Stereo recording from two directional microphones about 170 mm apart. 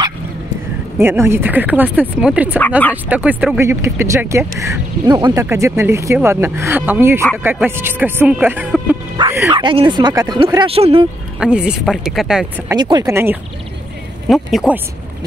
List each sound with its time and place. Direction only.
0.9 s speech: 15° right (ahead or behind)
9.5 s speech: 30° right (ahead or behind)
11.3 s speech: 5° right (ahead or behind)
12.7 s speech: 25° right (ahead or behind)
13.1 s speech: 15° right (ahead or behind)
14.3 s speech: centre (ahead or behind)